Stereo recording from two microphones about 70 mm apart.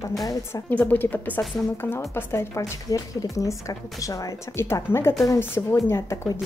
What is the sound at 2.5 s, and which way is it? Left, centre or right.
Speech, left.